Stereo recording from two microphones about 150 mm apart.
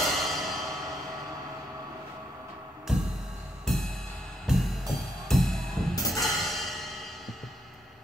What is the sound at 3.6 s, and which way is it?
Music, centre (ahead or behind).